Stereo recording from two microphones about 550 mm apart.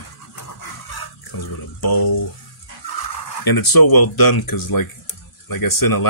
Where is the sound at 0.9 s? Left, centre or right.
Left.